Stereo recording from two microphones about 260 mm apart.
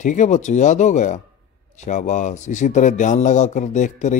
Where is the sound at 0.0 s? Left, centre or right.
Left.